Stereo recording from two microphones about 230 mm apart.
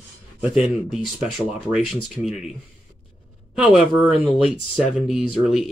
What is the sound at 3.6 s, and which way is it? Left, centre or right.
Speech, centre.